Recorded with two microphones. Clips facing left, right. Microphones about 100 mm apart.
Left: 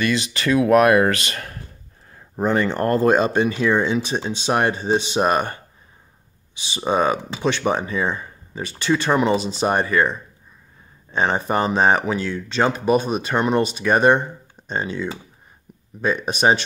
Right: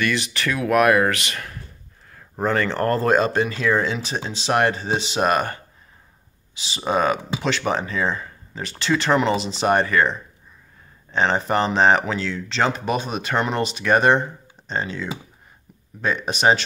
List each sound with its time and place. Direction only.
0.0 s speech: 30° left (ahead or behind)
2.4 s speech: 20° left (ahead or behind)
6.9 s speech: 20° left (ahead or behind)